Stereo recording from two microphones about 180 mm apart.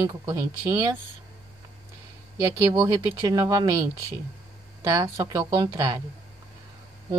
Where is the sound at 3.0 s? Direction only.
25° right (ahead or behind).